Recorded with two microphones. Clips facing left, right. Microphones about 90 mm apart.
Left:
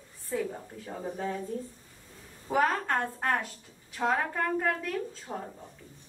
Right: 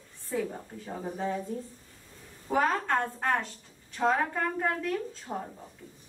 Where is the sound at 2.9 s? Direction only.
20° right (ahead or behind).